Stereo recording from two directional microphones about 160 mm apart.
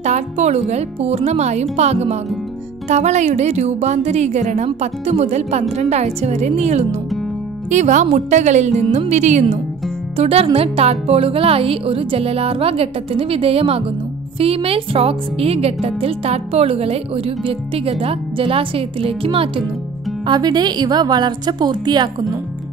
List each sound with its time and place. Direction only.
0.0 s a woman's voice: 45° right (ahead or behind); by 22.1 s 25° right (ahead or behind)